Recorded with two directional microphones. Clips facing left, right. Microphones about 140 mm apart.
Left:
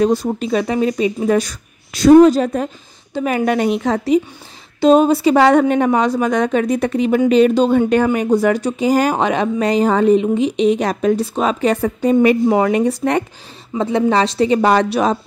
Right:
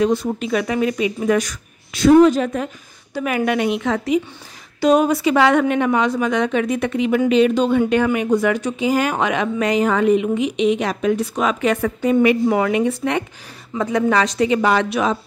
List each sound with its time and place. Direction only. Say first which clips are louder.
0.0 s speech: left 3 dB; 35° left (ahead or behind)
13.7 s speech: left 2 dB; 25° left (ahead or behind)